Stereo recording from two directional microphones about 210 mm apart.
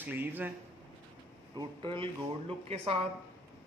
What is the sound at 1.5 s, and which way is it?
A man's voice, 25° right (ahead or behind).